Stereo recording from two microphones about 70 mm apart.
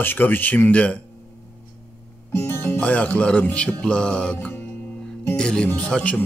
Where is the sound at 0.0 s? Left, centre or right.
Left.